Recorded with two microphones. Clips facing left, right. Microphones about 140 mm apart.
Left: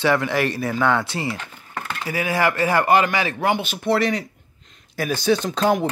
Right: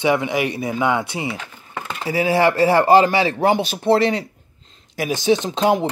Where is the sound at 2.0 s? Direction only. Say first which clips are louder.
Right 5 dB; 30° right (ahead or behind).